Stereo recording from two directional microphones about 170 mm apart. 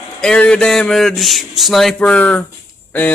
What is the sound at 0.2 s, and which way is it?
A man's voice, 5° left (ahead or behind).